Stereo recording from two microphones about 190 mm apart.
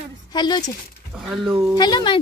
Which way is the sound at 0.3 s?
20° left (ahead or behind).